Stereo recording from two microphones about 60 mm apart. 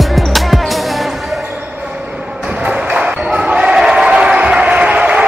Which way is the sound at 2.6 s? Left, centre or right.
Centre.